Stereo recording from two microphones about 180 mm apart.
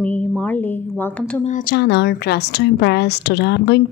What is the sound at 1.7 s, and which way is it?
A woman's voice, 70° left (ahead or behind).